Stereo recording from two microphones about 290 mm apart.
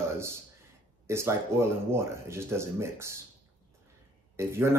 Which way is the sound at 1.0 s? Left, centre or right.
Centre.